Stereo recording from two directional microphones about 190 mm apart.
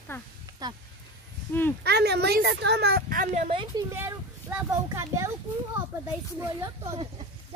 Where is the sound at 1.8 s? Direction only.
60° right (ahead or behind).